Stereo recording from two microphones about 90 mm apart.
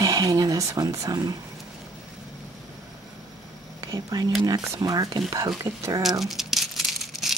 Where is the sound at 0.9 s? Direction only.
45° right (ahead or behind).